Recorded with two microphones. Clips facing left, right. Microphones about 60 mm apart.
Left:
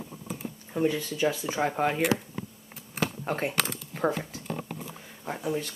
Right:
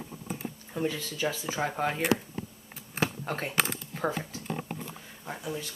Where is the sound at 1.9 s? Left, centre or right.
Centre.